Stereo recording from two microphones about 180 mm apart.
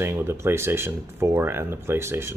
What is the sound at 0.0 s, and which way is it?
Speech, 15° right (ahead or behind).